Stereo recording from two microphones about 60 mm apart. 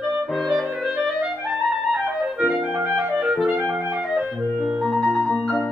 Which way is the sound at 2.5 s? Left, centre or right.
Right.